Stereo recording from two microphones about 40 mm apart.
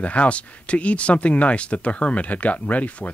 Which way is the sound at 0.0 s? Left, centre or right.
Left.